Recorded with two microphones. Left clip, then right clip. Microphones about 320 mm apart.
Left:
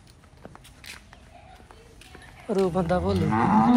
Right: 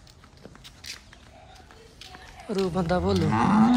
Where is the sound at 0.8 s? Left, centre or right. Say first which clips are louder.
Right 2 dB; centre.